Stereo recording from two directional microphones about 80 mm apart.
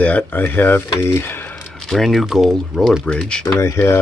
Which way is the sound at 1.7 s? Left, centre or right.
Centre.